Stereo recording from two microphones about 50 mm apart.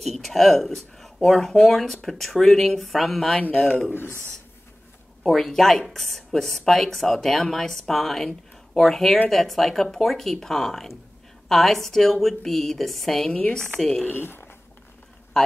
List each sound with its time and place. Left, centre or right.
0.0 s speech: centre
3.3 s speech: left
3.9 s speech: left
5.2 s speech: centre
14.0 s speech: left